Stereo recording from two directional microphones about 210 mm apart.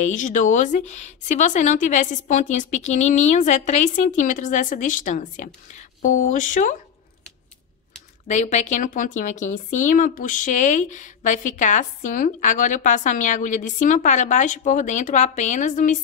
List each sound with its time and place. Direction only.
0.0 s a woman's voice: 35° left (ahead or behind)
8.3 s a woman's voice: 35° left (ahead or behind)